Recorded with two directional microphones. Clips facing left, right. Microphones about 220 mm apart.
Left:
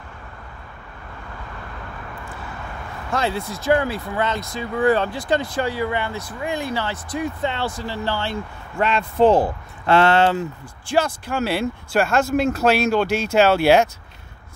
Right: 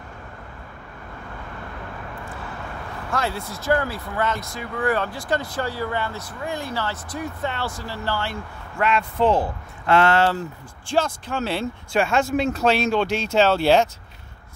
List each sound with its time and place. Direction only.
3.1 s speech: 20° left (ahead or behind)
10.9 s speech: 10° left (ahead or behind)